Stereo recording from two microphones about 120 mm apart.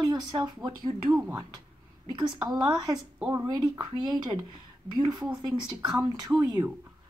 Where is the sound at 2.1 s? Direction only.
40° right (ahead or behind).